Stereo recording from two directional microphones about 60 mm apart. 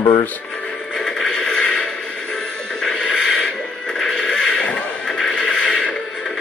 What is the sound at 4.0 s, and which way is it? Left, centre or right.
Neigh, centre.